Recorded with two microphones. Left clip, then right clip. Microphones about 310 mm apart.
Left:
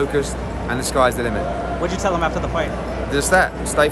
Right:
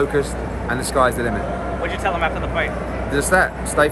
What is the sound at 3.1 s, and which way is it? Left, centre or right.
Speech, centre.